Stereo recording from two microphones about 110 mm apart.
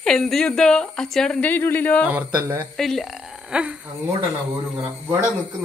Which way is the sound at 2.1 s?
20° right (ahead or behind).